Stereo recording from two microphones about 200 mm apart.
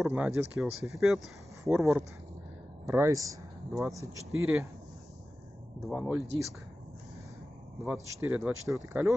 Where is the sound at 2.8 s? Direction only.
15° right (ahead or behind).